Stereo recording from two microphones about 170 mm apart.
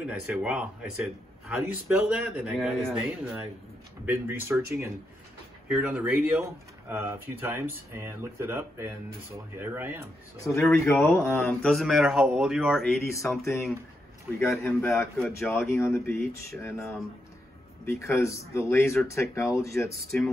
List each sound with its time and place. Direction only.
0.0 s a man's voice: 5° right (ahead or behind)
10.4 s speech: 15° left (ahead or behind)
11.6 s a man's voice: centre (ahead or behind)
13.0 s speech: 15° left (ahead or behind)
14.4 s speech: 15° left (ahead or behind)